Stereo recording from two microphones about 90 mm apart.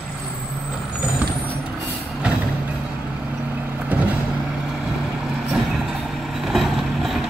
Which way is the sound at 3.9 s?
15° right (ahead or behind).